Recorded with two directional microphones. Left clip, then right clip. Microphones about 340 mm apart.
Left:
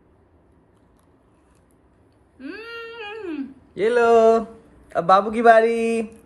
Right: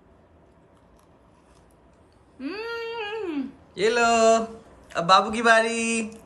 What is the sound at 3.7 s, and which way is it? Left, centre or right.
Speech, centre.